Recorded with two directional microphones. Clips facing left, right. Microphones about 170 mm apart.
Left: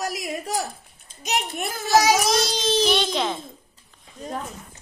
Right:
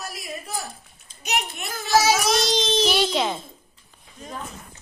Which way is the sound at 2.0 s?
10° left (ahead or behind).